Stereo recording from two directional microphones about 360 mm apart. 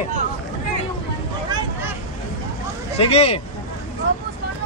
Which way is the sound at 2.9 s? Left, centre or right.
Centre.